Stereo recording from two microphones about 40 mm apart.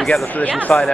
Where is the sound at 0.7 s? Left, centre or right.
Centre.